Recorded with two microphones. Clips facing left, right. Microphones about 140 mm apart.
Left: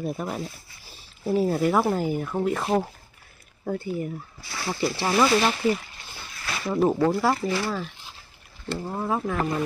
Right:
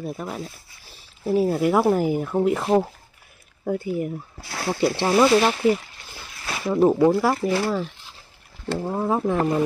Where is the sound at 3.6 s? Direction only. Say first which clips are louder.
Right 4 dB; 10° right (ahead or behind).